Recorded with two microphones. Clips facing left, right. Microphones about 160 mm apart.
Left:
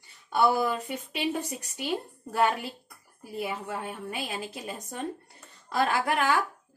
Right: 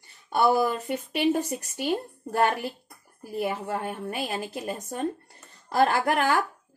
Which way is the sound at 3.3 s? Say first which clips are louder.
Right 4 dB; 45° right (ahead or behind).